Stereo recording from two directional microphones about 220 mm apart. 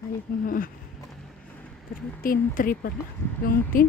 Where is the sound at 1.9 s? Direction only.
40° left (ahead or behind).